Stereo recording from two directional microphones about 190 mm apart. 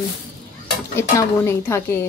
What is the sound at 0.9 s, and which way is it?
Speech, 15° left (ahead or behind).